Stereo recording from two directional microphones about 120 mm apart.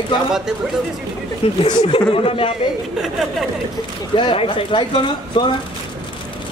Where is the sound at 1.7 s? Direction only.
40° left (ahead or behind).